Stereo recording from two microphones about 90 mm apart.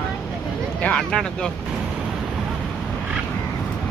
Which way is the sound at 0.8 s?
10° left (ahead or behind).